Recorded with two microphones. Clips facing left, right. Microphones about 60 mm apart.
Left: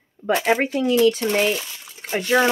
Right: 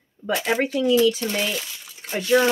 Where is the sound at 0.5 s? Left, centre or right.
Left.